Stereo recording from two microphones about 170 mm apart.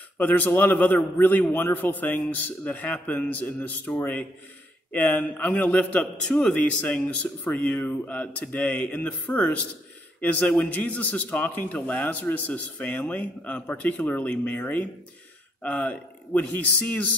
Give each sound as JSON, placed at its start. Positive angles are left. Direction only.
{"t": 0.2, "sound": "a man's voice", "side_deg": 10}